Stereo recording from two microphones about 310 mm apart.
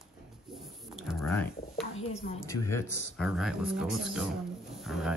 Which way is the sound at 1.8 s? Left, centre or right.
Centre.